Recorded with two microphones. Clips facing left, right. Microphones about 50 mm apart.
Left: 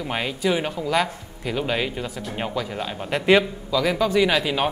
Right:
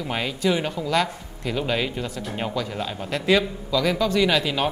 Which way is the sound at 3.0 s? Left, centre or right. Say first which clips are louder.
Left 3 dB; left.